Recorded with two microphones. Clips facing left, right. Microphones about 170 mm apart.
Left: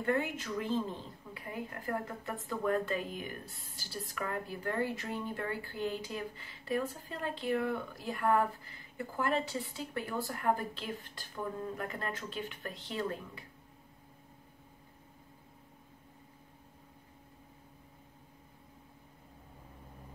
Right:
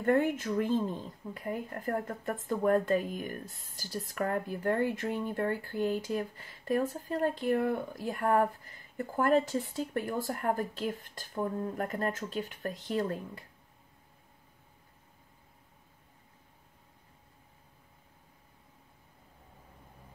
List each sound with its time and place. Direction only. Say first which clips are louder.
0.0 s a woman's voice: right 6 dB; 50° right (ahead or behind)